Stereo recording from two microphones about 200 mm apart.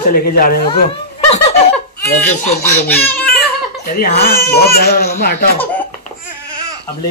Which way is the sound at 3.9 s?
45° left (ahead or behind).